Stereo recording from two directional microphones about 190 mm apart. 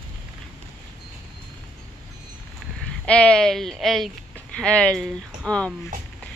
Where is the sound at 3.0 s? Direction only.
5° left (ahead or behind).